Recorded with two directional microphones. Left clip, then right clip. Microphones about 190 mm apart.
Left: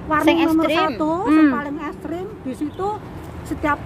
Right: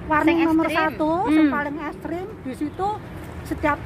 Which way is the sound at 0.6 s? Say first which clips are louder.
Left 3 dB; 65° left (ahead or behind).